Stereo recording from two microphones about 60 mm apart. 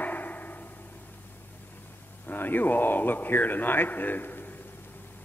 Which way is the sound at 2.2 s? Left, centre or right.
Left.